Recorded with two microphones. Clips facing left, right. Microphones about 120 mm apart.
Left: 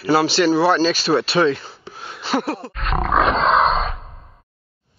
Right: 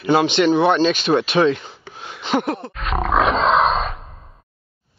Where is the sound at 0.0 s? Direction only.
20° right (ahead or behind).